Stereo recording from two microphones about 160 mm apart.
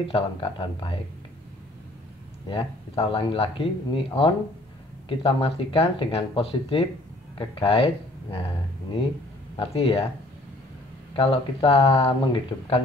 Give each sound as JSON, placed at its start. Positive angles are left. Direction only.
{"t": 0.1, "sound": "speech", "side_deg": 35}
{"t": 2.4, "sound": "speech", "side_deg": 35}
{"t": 9.6, "sound": "speech", "side_deg": 35}
{"t": 11.1, "sound": "speech", "side_deg": 35}